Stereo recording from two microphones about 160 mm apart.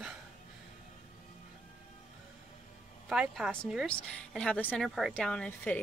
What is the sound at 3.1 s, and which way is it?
A woman's voice, 5° right (ahead or behind).